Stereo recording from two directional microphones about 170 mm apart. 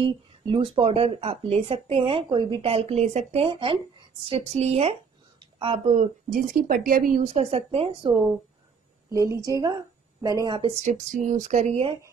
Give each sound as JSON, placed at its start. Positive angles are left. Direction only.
{"t": 0.5, "sound": "speech", "side_deg": -30}
{"t": 5.4, "sound": "a sound", "side_deg": -30}
{"t": 5.9, "sound": "speech", "side_deg": -50}
{"t": 7.5, "sound": "speech", "side_deg": -35}
{"t": 9.1, "sound": "a woman's voice", "side_deg": -20}
{"t": 10.8, "sound": "speech", "side_deg": -50}